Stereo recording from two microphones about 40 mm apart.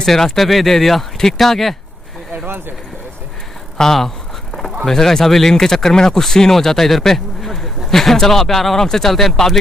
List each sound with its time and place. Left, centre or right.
0.0 s speech: centre
2.3 s a sound: right
3.8 s speech: centre